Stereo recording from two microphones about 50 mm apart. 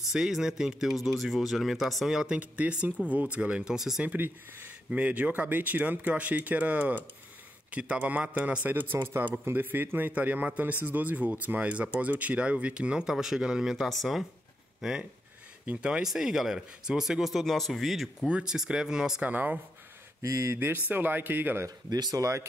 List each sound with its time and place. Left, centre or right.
0.1 s speech: centre
2.3 s a man's voice: right
3.6 s speech: centre
4.0 s speech: right
8.9 s speech: right
9.5 s a man's voice: right; by 15.0 s centre
15.6 s speech: right
16.0 s speech: centre
18.2 s speech: centre
19.2 s speech: right
20.2 s speech: right
20.5 s speech: right